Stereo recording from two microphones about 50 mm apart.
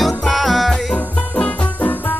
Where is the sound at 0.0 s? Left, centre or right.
Centre.